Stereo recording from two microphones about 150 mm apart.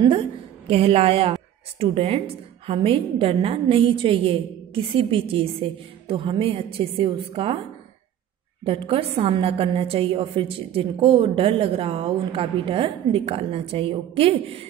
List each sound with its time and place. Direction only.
0.7 s a woman's voice: 40° right (ahead or behind)
8.6 s a woman's voice: 40° right (ahead or behind)